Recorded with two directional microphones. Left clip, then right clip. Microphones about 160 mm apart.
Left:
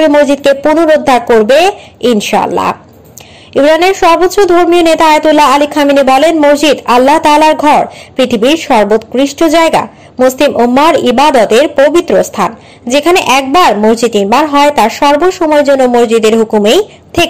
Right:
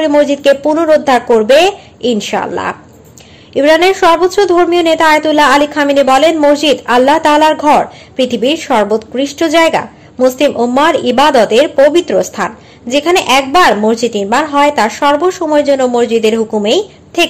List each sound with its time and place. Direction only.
0.0 s a woman's voice: 20° left (ahead or behind)